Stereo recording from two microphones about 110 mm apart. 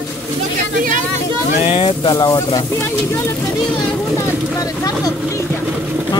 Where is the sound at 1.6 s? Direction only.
55° left (ahead or behind); by 2.5 s 40° left (ahead or behind).